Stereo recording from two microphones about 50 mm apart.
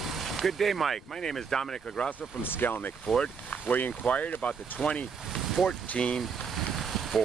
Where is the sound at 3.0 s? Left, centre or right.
Centre.